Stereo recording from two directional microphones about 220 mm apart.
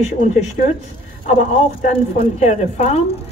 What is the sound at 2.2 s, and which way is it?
Speech, 30° left (ahead or behind).